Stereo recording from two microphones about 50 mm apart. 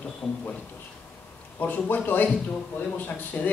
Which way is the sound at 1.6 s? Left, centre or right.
Left.